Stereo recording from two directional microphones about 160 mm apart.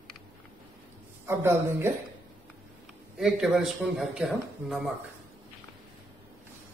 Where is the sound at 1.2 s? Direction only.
15° right (ahead or behind).